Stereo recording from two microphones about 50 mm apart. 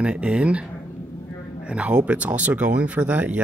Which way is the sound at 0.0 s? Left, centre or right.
Right.